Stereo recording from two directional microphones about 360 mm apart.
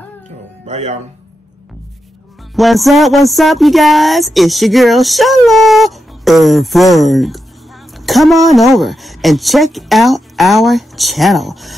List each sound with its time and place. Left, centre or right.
0.7 s speech: centre
2.5 s music: centre